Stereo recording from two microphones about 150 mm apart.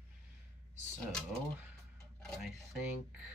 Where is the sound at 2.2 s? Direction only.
Centre (ahead or behind).